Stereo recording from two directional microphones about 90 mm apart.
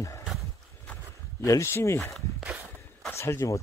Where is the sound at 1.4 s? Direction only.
35° left (ahead or behind).